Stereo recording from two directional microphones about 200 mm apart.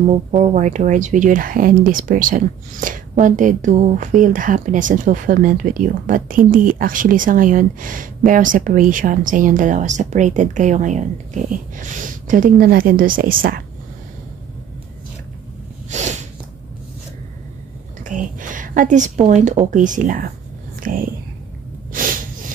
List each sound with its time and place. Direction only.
0.0 s speech: 35° right (ahead or behind)
15.9 s snort: 35° right (ahead or behind)
18.0 s a woman's voice: 40° right (ahead or behind)